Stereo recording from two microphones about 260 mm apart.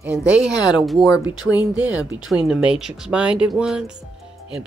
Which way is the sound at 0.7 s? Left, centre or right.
Centre.